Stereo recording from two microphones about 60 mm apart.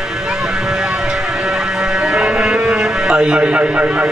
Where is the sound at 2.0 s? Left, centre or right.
Centre.